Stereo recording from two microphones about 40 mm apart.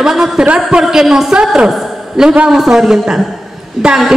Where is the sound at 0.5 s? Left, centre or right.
Right.